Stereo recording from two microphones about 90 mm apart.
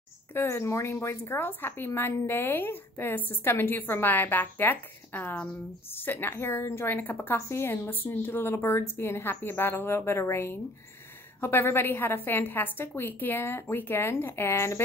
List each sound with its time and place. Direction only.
0.3 s a woman's voice: 25° left (ahead or behind)
7.3 s a woman's voice: 30° left (ahead or behind)